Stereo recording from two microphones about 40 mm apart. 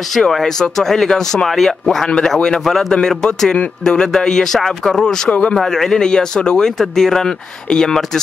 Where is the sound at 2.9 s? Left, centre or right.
Centre.